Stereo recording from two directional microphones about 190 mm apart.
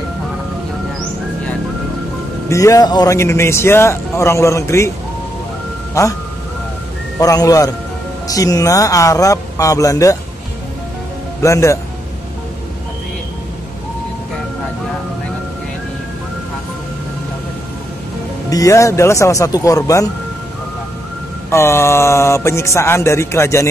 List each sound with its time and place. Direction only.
2.5 s speech: 15° left (ahead or behind)
7.2 s a man's voice: 20° left (ahead or behind)
11.4 s speech: 15° left (ahead or behind)
18.5 s speech: 15° left (ahead or behind)
21.5 s speech: 15° left (ahead or behind)